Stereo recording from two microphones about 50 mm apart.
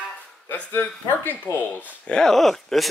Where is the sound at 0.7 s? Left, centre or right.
Left.